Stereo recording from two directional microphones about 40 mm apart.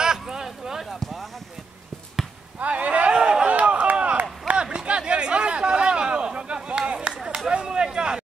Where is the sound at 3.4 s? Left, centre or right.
Right; by 8.2 s centre.